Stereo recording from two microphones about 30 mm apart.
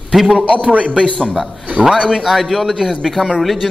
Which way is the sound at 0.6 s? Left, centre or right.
Right.